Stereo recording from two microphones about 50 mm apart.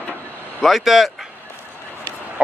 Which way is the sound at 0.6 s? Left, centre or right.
Centre.